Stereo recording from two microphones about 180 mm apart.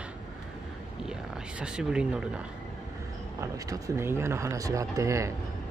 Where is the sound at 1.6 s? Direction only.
5° right (ahead or behind).